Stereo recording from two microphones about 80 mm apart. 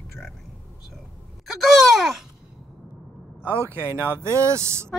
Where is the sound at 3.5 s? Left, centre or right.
Right.